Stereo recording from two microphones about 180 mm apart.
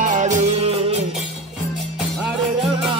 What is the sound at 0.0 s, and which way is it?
Music, 40° right (ahead or behind).